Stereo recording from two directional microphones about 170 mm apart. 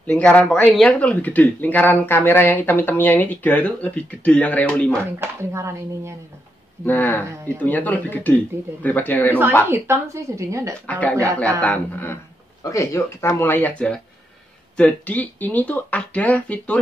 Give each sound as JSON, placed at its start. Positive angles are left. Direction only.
{"t": 0.0, "sound": "speech", "side_deg": 10}
{"t": 5.2, "sound": "a woman's voice", "side_deg": -15}
{"t": 6.8, "sound": "speech", "side_deg": 10}
{"t": 9.7, "sound": "a woman's voice", "side_deg": -15}
{"t": 10.9, "sound": "speech", "side_deg": 10}